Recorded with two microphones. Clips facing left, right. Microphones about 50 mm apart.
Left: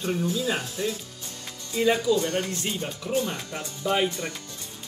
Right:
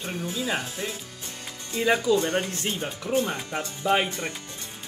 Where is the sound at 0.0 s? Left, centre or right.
Right.